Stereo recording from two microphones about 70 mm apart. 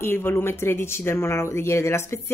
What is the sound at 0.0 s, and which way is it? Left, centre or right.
A woman's voice, left.